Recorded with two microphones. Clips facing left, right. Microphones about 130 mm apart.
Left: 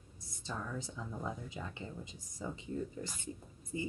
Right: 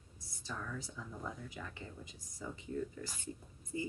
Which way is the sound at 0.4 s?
20° left (ahead or behind).